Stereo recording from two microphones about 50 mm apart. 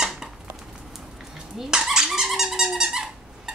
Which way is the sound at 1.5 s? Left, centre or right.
Centre.